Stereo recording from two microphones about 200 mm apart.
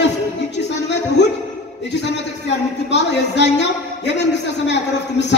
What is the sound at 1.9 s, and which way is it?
A man's voice, 60° left (ahead or behind).